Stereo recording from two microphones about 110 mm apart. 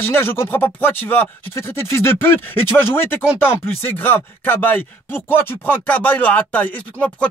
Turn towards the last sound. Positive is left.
turn(degrees=15)  # may be behind; listen again after turning